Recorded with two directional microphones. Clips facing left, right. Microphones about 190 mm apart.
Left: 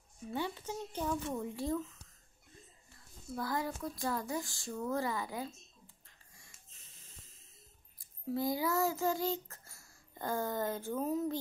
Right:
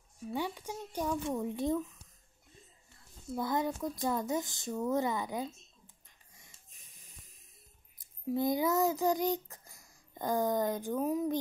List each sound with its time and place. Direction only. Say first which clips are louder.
0.3 s speech: right 1 dB; 10° right (ahead or behind)
3.3 s speech: right 4 dB; 20° right (ahead or behind)
6.0 s wheeze: even; 20° right (ahead or behind)
8.0 s speech: right 3 dB; 20° right (ahead or behind)